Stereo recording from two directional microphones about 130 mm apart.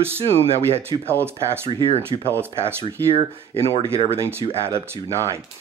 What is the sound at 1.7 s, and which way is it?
Speech, 40° right (ahead or behind).